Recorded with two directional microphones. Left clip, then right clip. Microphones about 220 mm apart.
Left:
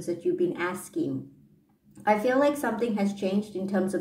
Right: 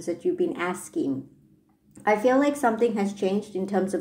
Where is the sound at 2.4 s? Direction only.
30° right (ahead or behind).